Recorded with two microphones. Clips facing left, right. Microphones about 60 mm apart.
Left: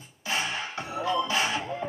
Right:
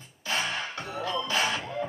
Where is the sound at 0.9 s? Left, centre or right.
Centre.